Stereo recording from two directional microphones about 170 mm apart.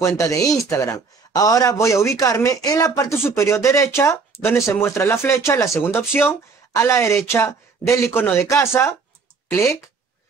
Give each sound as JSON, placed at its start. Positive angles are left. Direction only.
{"t": 0.0, "sound": "speech", "side_deg": 20}